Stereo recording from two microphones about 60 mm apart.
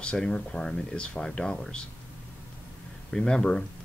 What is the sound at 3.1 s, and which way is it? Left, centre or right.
Speech, centre.